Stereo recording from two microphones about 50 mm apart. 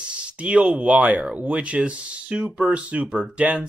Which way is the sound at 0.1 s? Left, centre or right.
Right.